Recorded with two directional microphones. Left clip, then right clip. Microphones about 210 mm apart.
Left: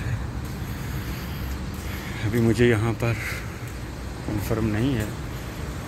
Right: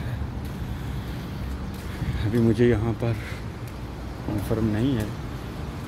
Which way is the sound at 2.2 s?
10° right (ahead or behind).